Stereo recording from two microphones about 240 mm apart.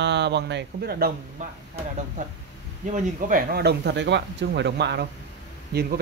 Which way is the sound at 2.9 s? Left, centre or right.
Right.